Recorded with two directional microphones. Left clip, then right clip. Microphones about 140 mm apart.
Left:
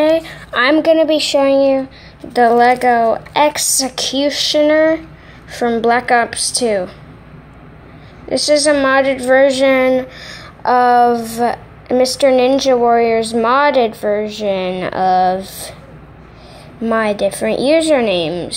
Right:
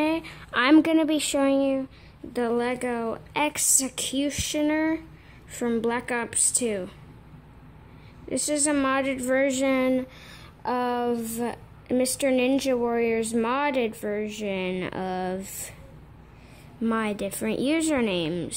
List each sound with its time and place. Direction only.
0.0 s a sound: 25° right (ahead or behind)
0.8 s a woman's voice: 35° right (ahead or behind)
8.3 s a woman's voice: 25° right (ahead or behind)
16.8 s a woman's voice: 25° right (ahead or behind)